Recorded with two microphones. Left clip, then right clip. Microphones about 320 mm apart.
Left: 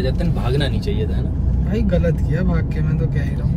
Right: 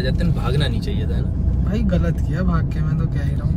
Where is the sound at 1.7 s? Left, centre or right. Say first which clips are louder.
Left 4 dB; centre.